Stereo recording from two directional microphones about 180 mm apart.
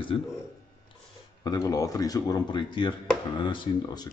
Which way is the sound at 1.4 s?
20° left (ahead or behind).